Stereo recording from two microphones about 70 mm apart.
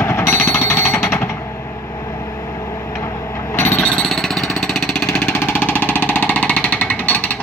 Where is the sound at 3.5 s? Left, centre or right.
Left.